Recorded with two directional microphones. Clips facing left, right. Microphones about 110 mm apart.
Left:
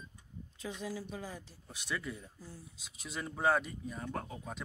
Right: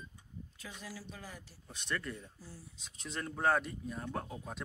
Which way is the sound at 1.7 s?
5° left (ahead or behind).